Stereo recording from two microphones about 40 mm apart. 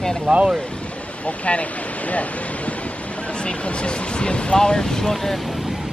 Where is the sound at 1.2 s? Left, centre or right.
Left.